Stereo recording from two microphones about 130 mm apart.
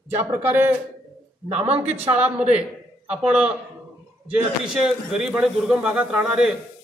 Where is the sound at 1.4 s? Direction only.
55° right (ahead or behind).